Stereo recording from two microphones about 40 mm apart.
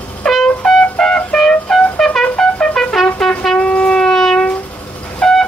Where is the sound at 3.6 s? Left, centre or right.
Left.